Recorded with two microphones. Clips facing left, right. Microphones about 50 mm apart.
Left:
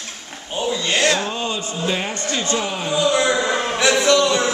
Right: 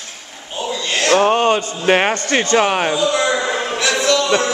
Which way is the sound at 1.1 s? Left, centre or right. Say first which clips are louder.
Right 8 dB; right.